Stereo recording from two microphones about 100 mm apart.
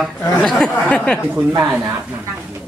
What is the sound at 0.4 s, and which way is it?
Speech, 5° left (ahead or behind).